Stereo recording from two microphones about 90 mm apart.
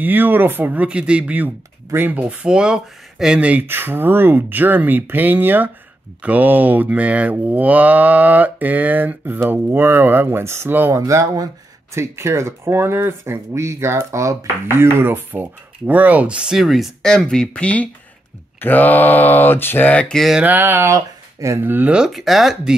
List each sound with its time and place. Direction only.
0.0 s speech: 20° right (ahead or behind)
11.0 s speech: 40° right (ahead or behind); by 20.2 s 15° left (ahead or behind)
20.3 s speech: 20° right (ahead or behind)
20.9 s speech: 35° right (ahead or behind)
21.6 s speech: 20° right (ahead or behind)
21.9 s speech: 5° right (ahead or behind)